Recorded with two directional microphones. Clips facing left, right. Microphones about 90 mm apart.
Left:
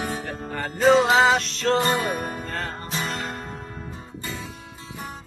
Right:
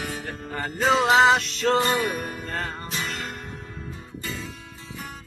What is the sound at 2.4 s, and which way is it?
Music, centre (ahead or behind).